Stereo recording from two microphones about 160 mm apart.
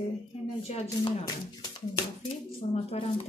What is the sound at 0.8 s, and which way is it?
Speech, 25° left (ahead or behind).